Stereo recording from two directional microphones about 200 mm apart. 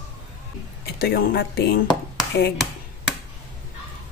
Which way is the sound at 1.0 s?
50° left (ahead or behind).